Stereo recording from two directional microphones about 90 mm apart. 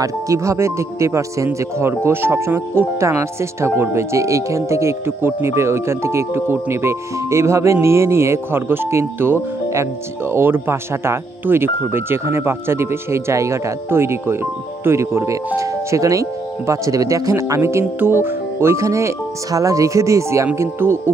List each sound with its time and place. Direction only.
0.0 s speech: 35° right (ahead or behind)